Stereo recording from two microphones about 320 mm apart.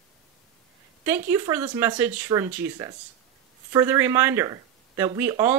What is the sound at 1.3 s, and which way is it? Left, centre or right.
Speech, centre.